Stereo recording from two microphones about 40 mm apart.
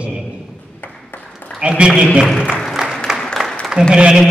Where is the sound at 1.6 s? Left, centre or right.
Right.